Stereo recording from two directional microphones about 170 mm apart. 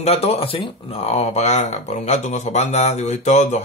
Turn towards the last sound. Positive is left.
turn(degrees=45)  # may be behind; listen again after turning